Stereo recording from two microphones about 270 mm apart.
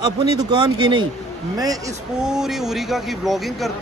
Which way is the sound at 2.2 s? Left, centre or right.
Centre.